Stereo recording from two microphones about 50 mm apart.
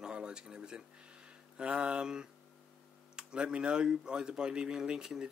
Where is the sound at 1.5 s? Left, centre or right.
Right.